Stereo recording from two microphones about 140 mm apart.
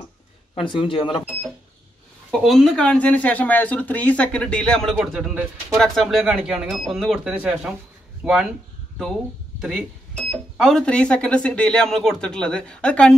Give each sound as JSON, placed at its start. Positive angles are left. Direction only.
{"t": 0.6, "sound": "speech", "side_deg": 40}
{"t": 1.2, "sound": "speech", "side_deg": -5}